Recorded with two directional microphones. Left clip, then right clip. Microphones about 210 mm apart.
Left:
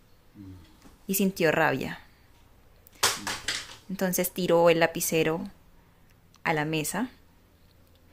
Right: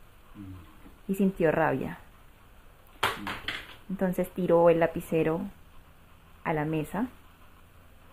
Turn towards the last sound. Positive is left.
turn(degrees=20)  # may be behind; listen again after turning